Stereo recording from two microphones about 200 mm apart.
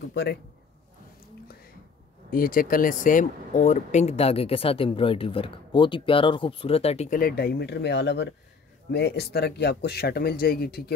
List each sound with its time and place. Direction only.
0.1 s a man's voice: 55° left (ahead or behind)
2.3 s speech: 45° left (ahead or behind)